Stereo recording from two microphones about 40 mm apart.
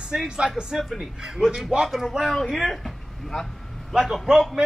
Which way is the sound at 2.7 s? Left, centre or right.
Centre.